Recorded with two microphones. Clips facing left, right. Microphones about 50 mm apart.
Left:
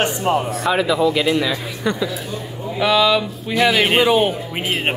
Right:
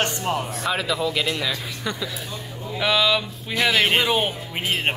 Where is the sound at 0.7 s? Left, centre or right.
Centre.